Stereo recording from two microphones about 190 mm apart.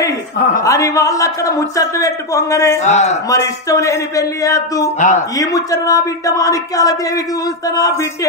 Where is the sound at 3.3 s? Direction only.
15° left (ahead or behind).